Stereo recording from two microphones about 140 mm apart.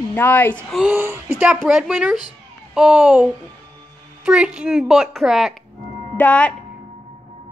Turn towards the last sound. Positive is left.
turn(degrees=10)  # may be behind; listen again after turning